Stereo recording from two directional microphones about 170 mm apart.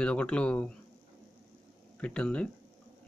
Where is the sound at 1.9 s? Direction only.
5° left (ahead or behind).